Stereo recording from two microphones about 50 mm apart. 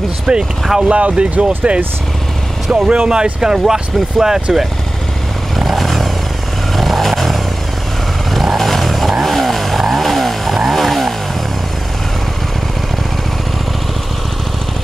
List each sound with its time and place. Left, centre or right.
0.3 s speech: centre
0.8 s speech: right
2.7 s speech: right
5.6 s vehicle: centre
6.8 s a sound: centre
8.3 s vehicle: centre
9.2 s chainsaw: centre